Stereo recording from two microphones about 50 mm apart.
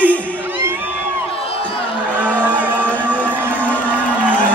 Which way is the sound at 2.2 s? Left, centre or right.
Right.